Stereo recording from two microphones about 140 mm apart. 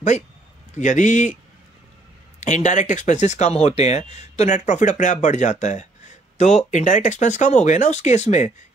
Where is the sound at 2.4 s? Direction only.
60° left (ahead or behind).